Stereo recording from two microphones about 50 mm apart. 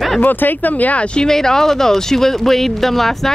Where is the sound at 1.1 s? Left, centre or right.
Centre.